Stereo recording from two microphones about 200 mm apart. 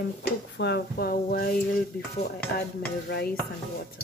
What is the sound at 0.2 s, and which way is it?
Speech, 55° left (ahead or behind).